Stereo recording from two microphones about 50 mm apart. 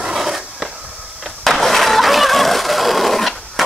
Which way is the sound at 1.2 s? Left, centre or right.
Centre.